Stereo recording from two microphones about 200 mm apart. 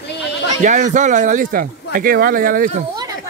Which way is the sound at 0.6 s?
40° right (ahead or behind).